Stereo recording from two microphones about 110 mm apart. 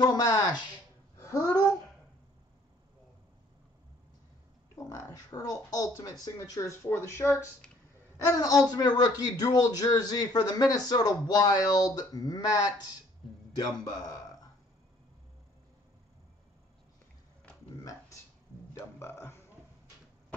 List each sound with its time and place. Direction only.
0.0 s speech: 35° left (ahead or behind)
1.2 s babbling: 35° left (ahead or behind)
4.7 s speech: 30° left (ahead or behind)
8.3 s speech: 30° left (ahead or behind)
13.8 s a man's voice: 35° left (ahead or behind)
18.8 s music: 20° left (ahead or behind)